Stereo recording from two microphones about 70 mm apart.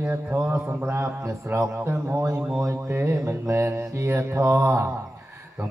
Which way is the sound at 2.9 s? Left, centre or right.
Right.